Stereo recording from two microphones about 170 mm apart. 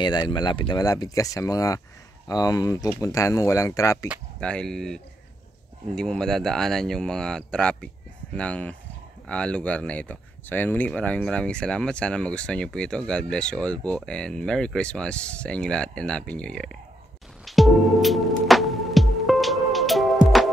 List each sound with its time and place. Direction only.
0.0 s speech: 25° left (ahead or behind)
4.4 s speech: 5° left (ahead or behind)
17.5 s music: centre (ahead or behind)